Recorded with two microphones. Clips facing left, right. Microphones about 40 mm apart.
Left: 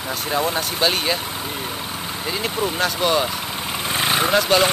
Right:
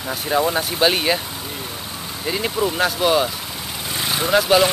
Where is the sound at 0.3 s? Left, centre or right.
Centre.